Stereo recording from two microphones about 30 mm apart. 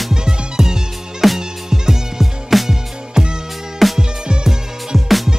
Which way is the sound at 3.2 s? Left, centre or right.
Centre.